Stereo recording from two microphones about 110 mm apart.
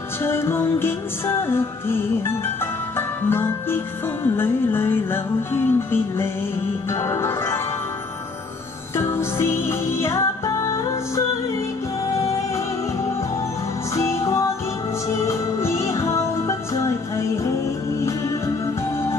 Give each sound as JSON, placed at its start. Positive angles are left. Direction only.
{"t": 0.2, "sound": "music", "side_deg": 25}
{"t": 8.9, "sound": "music", "side_deg": 25}
{"t": 13.9, "sound": "music", "side_deg": 25}